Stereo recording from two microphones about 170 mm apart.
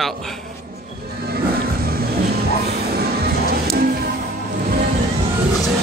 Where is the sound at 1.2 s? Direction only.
60° right (ahead or behind).